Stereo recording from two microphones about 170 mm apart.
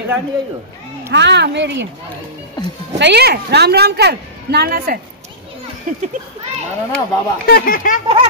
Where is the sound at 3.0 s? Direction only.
75° right (ahead or behind).